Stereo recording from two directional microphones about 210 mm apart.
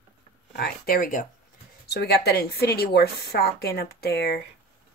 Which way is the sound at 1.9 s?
50° left (ahead or behind).